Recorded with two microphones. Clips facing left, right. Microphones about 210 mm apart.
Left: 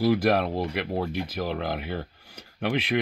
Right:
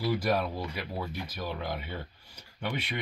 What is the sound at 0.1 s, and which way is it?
Speech, 90° left.